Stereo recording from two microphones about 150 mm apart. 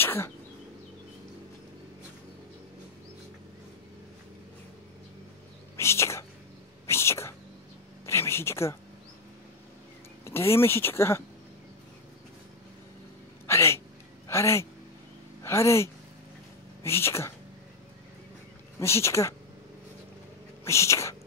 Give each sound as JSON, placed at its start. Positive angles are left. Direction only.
{"t": 0.0, "sound": "arrow", "side_deg": 15}
{"t": 5.8, "sound": "speech", "side_deg": 20}
{"t": 6.9, "sound": "cat", "side_deg": 15}
{"t": 8.1, "sound": "a sound", "side_deg": 15}
{"t": 10.2, "sound": "speech", "side_deg": 15}
{"t": 13.5, "sound": "a sound", "side_deg": 15}
{"t": 14.2, "sound": "a woman's voice", "side_deg": 20}
{"t": 18.8, "sound": "speech", "side_deg": 20}
{"t": 20.6, "sound": "speech", "side_deg": 20}